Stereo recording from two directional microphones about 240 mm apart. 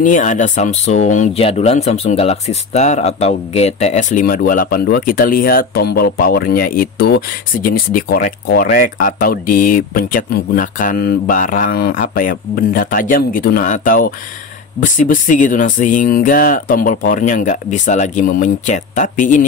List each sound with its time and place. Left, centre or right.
0.0 s speech: left